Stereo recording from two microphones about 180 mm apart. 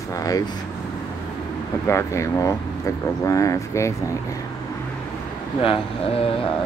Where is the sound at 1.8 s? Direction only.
15° left (ahead or behind).